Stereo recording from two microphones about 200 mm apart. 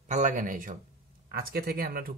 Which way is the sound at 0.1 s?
40° right (ahead or behind).